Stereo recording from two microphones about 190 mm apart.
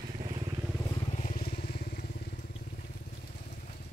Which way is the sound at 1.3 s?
55° left (ahead or behind).